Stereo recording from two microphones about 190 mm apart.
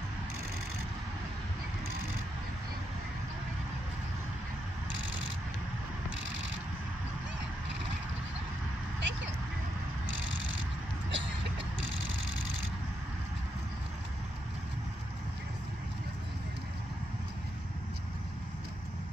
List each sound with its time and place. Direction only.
9.0 s vehicle: 70° right (ahead or behind)
11.1 s vehicle: 70° right (ahead or behind)